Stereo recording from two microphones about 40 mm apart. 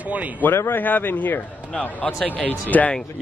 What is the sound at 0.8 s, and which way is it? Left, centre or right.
Speech, left.